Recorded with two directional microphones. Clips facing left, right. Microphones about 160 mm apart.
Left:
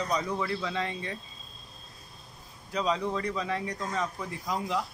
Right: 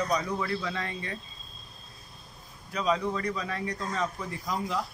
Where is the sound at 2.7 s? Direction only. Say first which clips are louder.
Right 1 dB; 25° left (ahead or behind).